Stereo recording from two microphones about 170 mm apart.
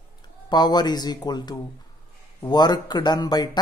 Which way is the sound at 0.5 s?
25° left (ahead or behind).